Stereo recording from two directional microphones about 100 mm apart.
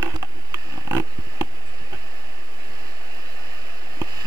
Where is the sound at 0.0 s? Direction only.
25° right (ahead or behind).